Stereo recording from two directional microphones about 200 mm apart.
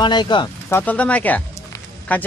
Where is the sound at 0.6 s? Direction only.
10° left (ahead or behind).